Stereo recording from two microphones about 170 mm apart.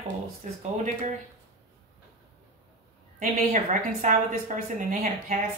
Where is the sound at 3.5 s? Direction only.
45° right (ahead or behind).